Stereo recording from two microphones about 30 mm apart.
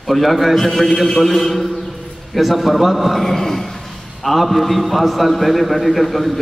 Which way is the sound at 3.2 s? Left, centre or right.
Centre.